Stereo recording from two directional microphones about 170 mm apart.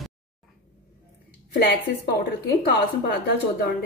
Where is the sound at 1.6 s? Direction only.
70° left (ahead or behind).